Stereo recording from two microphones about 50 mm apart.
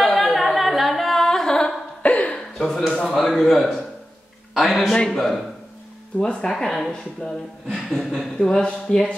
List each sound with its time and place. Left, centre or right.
0.0 s music: centre
2.0 s a sound: left
2.9 s speech: centre
3.2 s a man's voice: centre
4.9 s speech: centre
6.5 s a man's voice: centre
8.4 s speech: centre